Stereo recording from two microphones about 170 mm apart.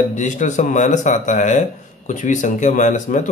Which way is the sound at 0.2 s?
45° left (ahead or behind).